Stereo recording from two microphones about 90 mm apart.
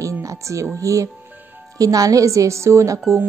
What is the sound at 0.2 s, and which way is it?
Speech, 35° right (ahead or behind).